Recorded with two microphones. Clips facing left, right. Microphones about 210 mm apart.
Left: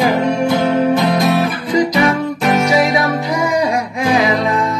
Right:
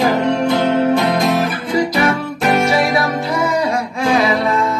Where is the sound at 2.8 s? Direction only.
15° left (ahead or behind).